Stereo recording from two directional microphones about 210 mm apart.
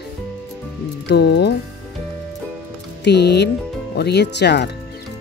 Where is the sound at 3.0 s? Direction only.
55° left (ahead or behind).